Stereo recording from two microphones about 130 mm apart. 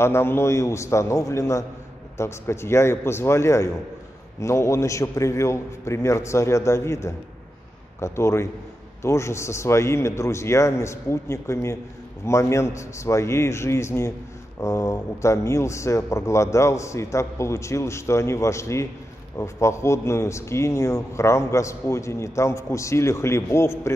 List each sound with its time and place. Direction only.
0.0 s a man's voice: 20° left (ahead or behind)